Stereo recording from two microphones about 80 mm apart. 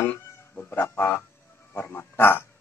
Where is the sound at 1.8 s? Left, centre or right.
Left.